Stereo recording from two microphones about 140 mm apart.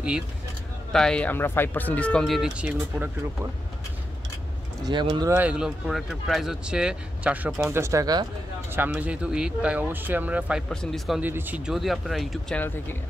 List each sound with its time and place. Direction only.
0.9 s speech: 5° left (ahead or behind)
4.8 s speech: 35° right (ahead or behind)
5.3 s speech: 10° right (ahead or behind); by 8.3 s 25° right (ahead or behind)
8.7 s speech: 10° right (ahead or behind)
10.7 s speech: 5° left (ahead or behind)
11.1 s speech: 15° right (ahead or behind)
12.5 s speech: 15° left (ahead or behind)